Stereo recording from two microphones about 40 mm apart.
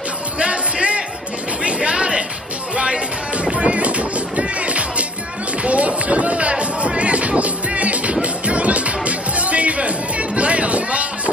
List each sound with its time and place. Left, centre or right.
0.4 s music: right
1.6 s a sound: right
2.7 s music: right
5.6 s run: right
6.5 s music: right